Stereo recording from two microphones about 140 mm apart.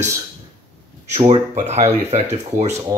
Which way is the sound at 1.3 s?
50° right (ahead or behind).